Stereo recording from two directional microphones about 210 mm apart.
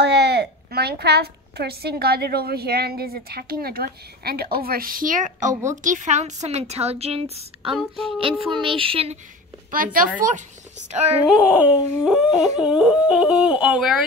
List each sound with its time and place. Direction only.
0.0 s a woman's voice: 55° right (ahead or behind); by 5.5 s 40° right (ahead or behind)
5.5 s a woman's voice: 15° right (ahead or behind)
5.8 s a woman's voice: 35° right (ahead or behind)
7.7 s a sound: centre (ahead or behind)
8.2 s speech: 25° right (ahead or behind)
9.9 s a woman's voice: 40° right (ahead or behind)
11.2 s a sound: 5° right (ahead or behind)